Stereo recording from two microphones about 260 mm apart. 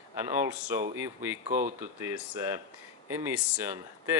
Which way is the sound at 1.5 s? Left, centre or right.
Right.